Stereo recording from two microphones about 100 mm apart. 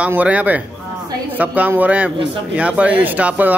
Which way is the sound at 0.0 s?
15° right (ahead or behind).